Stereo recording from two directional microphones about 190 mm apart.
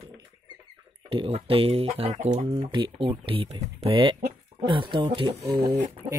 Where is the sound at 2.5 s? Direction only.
25° right (ahead or behind).